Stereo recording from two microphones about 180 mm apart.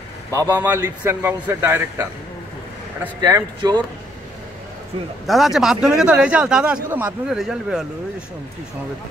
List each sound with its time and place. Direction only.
0.3 s a man's voice: 15° right (ahead or behind)
3.2 s speech: 20° right (ahead or behind)
5.2 s a man's voice: centre (ahead or behind)